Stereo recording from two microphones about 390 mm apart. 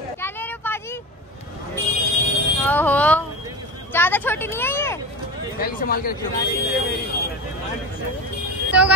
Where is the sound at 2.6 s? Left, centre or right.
Centre.